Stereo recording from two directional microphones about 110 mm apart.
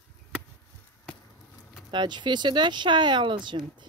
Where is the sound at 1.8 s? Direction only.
45° right (ahead or behind).